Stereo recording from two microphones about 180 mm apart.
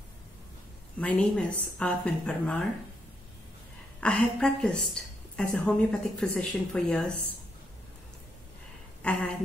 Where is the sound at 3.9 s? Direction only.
5° left (ahead or behind).